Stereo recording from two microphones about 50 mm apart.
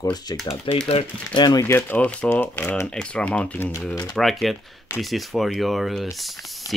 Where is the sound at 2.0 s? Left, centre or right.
Left.